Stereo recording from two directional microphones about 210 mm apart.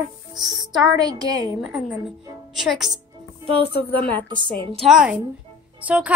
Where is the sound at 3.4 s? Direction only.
25° right (ahead or behind).